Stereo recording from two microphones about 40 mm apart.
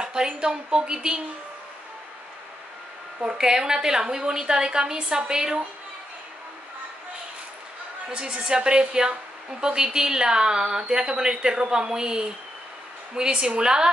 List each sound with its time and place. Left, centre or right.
0.0 s a woman's voice: centre
3.3 s a woman's voice: centre
8.1 s a woman's voice: right